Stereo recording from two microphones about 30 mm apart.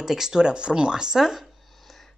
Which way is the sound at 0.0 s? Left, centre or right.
Centre.